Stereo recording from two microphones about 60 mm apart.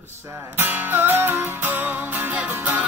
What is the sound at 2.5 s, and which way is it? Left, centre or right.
Music, right.